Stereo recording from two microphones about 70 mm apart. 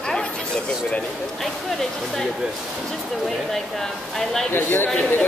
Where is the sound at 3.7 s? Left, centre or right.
Centre.